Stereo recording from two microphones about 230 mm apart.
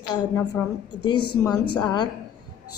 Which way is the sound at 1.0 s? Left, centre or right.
Centre.